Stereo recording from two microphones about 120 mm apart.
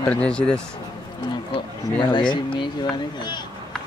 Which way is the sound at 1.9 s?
40° left (ahead or behind).